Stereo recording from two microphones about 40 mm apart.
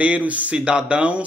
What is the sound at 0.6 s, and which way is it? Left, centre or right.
Speech, right.